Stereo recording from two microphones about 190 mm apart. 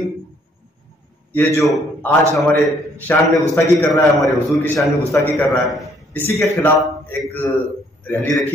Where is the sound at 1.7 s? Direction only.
Centre (ahead or behind).